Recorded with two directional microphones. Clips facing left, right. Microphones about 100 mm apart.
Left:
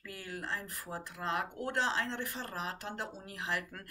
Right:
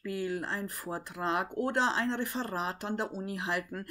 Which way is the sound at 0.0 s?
20° right (ahead or behind).